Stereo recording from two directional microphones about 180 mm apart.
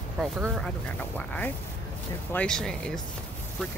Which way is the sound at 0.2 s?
Centre (ahead or behind).